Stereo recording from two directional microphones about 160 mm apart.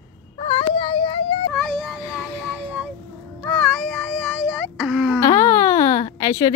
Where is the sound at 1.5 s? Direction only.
Centre (ahead or behind).